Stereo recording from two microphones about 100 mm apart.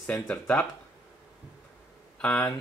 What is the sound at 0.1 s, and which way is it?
Speech, 5° left (ahead or behind).